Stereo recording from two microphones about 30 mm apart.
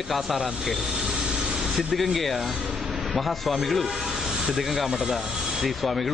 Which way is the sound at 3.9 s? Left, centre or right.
Centre.